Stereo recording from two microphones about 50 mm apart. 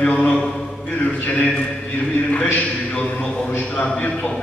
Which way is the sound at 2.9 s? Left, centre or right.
Centre.